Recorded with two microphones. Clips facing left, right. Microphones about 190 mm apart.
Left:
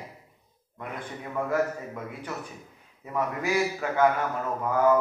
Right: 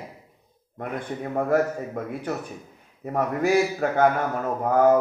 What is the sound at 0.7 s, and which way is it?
Speech, 45° right (ahead or behind).